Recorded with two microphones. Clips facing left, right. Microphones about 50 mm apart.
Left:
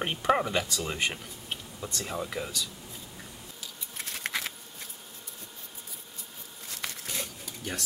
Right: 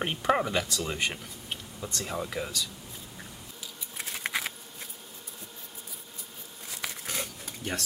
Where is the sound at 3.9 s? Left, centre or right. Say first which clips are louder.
Right 1 dB; centre.